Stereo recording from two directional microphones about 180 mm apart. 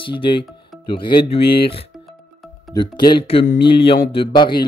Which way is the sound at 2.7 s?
25° left (ahead or behind).